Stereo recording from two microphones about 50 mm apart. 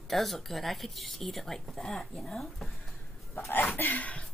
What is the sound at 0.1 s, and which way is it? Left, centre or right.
A woman's voice, centre.